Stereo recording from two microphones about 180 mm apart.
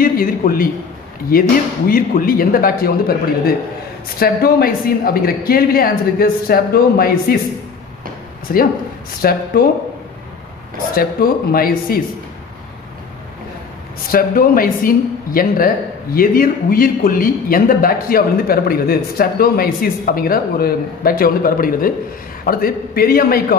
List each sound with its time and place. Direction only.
0.0 s a man's voice: 50° left (ahead or behind)
8.5 s a man's voice: 55° left (ahead or behind)
11.0 s speech: 55° left (ahead or behind)
14.1 s a man's voice: 50° left (ahead or behind)